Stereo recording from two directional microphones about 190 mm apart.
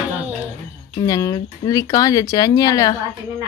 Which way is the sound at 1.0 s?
20° left (ahead or behind).